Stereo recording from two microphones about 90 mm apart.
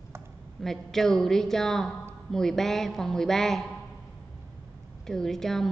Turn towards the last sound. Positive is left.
turn(degrees=5)  # may be behind; listen again after turning